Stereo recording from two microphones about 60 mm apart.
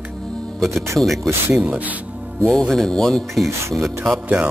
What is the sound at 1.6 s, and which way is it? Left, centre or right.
Speech, right.